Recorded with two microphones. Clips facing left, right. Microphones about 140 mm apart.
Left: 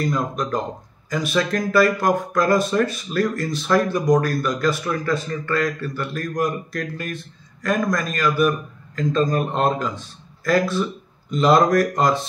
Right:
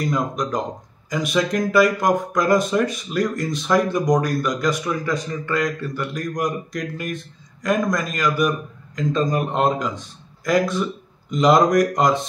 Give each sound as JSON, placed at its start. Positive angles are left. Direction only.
{"t": 0.1, "sound": "a man's voice", "side_deg": -15}